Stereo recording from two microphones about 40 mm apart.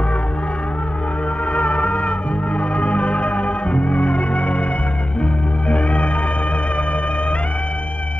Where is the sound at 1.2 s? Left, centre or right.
Left.